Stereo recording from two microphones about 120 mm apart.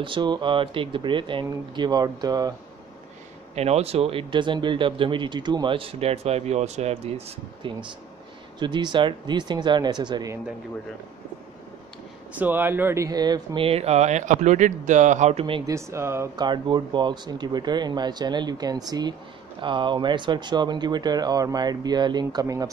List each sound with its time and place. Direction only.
0.0 s speech: 40° right (ahead or behind)
3.5 s speech: 60° right (ahead or behind)
8.5 s speech: 40° right (ahead or behind)
12.4 s speech: 15° right (ahead or behind); by 13.6 s 35° right (ahead or behind)
13.6 s speech: 55° right (ahead or behind); by 15.4 s 75° right (ahead or behind)
15.6 s speech: 25° right (ahead or behind)
16.3 s speech: 40° right (ahead or behind)